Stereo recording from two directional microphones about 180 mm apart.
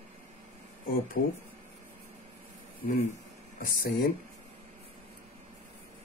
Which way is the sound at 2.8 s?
55° left (ahead or behind).